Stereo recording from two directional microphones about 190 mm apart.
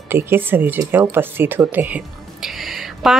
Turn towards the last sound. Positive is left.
turn(degrees=0)  # may be behind; listen again after turning